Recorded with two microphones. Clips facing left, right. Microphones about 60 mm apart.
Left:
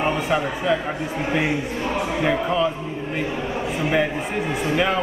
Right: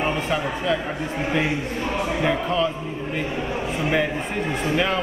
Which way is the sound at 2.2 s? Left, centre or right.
Centre.